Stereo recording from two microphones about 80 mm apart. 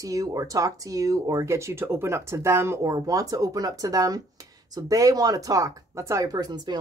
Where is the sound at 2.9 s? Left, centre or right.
Right.